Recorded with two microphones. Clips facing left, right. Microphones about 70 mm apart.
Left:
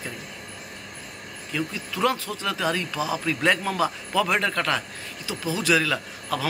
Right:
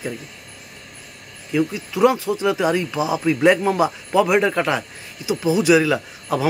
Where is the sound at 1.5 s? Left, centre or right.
Centre.